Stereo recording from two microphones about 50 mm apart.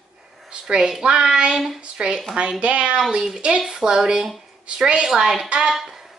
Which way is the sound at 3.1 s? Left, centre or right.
Centre.